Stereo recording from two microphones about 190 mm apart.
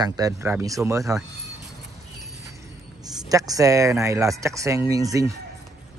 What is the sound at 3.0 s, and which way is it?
Speech, 20° right (ahead or behind).